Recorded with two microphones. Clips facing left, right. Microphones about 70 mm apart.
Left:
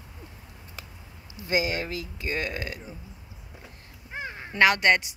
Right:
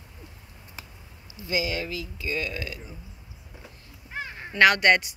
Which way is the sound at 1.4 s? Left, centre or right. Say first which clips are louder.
Left 2 dB; left.